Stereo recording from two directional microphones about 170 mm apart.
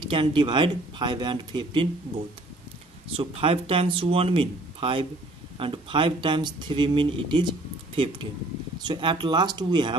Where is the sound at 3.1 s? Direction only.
35° right (ahead or behind).